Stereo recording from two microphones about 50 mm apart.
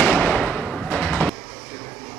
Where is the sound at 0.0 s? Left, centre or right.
Left.